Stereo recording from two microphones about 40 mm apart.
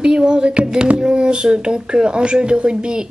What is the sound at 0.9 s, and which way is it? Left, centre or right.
Speech, right.